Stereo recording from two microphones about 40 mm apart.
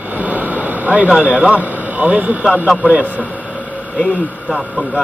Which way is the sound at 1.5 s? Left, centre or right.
Right.